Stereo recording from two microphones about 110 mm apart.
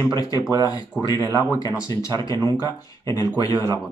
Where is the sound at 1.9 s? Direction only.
35° left (ahead or behind).